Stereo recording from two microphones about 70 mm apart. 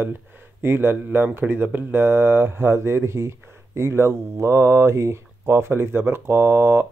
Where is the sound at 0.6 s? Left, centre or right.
Right.